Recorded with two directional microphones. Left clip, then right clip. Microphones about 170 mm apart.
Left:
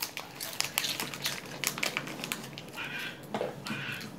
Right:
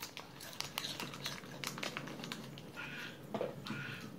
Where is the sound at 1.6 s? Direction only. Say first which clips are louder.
Left 10 dB; 15° left (ahead or behind).